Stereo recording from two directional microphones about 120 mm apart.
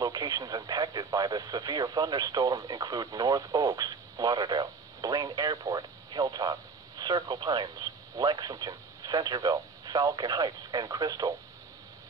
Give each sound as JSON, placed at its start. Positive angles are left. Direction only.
{"t": 0.0, "sound": "speech", "side_deg": -30}